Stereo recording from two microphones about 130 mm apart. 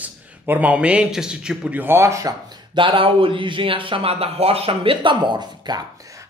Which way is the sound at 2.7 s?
40° right (ahead or behind).